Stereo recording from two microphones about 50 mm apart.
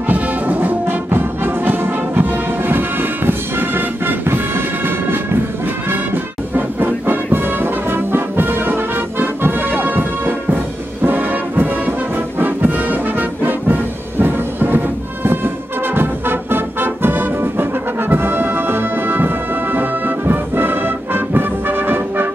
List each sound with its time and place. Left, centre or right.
0.1 s music: right